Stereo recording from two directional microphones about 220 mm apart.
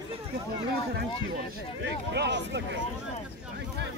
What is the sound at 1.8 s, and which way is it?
Speech, 50° right (ahead or behind).